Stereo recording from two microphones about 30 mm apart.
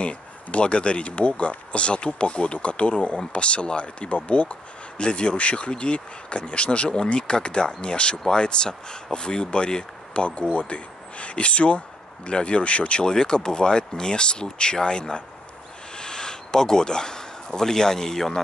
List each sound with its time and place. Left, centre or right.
0.0 s speech: left
10.1 s speech: left
13.0 s speech: left